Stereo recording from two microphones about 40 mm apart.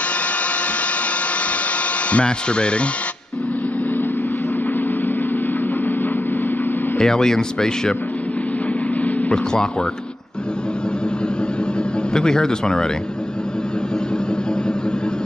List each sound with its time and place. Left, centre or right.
2.0 s speech: left
7.0 s speech: centre
9.3 s speech: centre
12.1 s speech: centre